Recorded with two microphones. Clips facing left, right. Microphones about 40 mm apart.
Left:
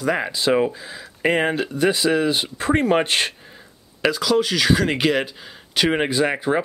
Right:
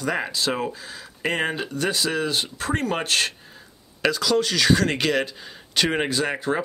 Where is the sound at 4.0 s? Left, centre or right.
Centre.